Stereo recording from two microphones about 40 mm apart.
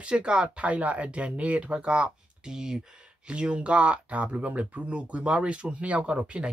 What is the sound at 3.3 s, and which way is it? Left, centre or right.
Speech, right.